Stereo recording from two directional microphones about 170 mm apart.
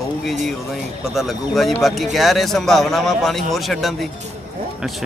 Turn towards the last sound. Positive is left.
turn(degrees=0)  # may be behind; listen again after turning